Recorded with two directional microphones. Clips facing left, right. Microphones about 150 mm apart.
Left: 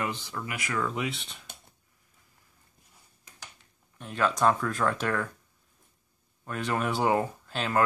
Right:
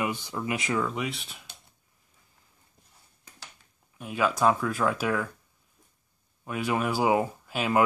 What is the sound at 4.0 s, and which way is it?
Speech, 5° right (ahead or behind).